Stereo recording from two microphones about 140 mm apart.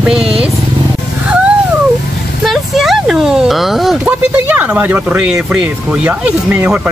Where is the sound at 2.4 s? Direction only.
Centre (ahead or behind).